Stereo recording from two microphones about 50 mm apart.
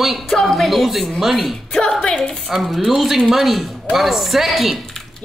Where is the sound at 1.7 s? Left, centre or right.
Centre.